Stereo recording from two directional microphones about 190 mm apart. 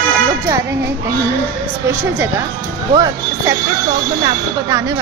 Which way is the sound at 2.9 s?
20° right (ahead or behind).